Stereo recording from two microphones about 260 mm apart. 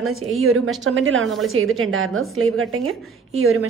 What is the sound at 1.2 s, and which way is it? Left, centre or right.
A woman's voice, centre.